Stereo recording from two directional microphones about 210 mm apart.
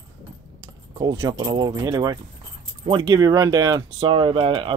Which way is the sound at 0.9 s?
25° right (ahead or behind).